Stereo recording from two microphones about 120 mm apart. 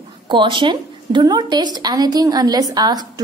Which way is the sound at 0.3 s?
40° right (ahead or behind).